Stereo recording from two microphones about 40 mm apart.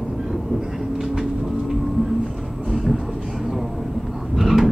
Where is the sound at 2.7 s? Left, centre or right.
Centre.